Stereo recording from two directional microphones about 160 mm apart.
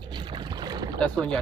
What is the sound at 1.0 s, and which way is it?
Speech, 5° left (ahead or behind).